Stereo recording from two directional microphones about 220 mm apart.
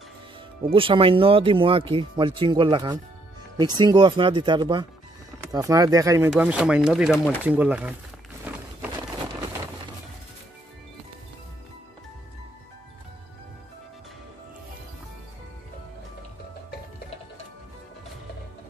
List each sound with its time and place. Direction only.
0.7 s speech: 25° right (ahead or behind); by 7.9 s 5° right (ahead or behind)